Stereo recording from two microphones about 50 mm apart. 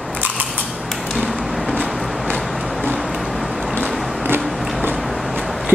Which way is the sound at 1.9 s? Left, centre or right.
Centre.